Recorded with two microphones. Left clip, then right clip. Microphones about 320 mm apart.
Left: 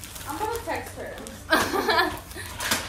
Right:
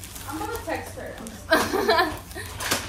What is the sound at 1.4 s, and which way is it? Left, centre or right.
Speech, centre.